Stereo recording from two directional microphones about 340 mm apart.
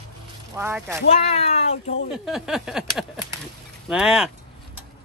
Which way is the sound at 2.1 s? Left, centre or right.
Centre.